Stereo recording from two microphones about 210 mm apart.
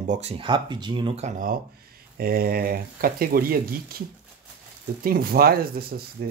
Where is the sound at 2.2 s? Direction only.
45° right (ahead or behind).